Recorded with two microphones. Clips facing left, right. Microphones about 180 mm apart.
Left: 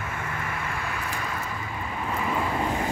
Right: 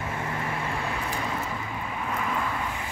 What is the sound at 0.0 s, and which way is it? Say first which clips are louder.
Vehicle: right 2 dB; 30° right (ahead or behind).